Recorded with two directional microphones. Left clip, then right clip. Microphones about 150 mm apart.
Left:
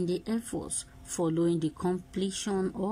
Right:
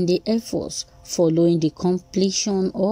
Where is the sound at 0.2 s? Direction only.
20° right (ahead or behind).